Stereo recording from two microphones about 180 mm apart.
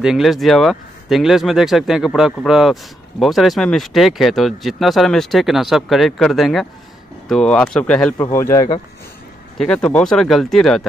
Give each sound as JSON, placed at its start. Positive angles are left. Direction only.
{"t": 0.0, "sound": "speech", "side_deg": 0}
{"t": 9.6, "sound": "speech", "side_deg": 5}